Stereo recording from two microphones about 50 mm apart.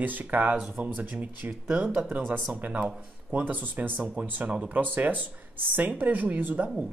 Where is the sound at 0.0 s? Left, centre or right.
Right.